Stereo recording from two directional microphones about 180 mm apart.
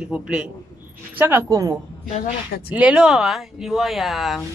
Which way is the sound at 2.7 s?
5° right (ahead or behind).